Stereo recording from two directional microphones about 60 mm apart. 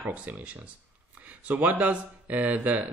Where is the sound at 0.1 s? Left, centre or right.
Right.